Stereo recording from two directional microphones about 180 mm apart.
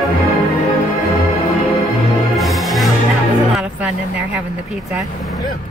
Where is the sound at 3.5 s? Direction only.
5° right (ahead or behind).